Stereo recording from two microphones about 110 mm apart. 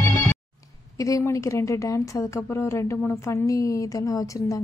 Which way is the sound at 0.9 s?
30° left (ahead or behind).